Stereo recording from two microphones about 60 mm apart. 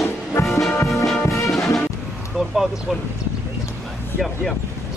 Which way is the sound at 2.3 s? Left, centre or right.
Centre.